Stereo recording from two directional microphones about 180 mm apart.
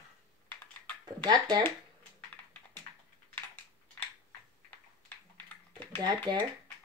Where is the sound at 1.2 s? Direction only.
20° right (ahead or behind).